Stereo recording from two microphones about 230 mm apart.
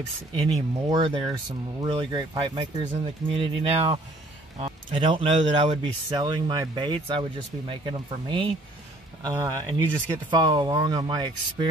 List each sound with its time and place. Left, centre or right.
0.8 s a man's voice: centre